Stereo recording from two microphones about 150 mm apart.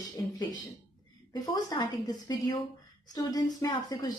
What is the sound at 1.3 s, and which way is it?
Speech, 25° left (ahead or behind).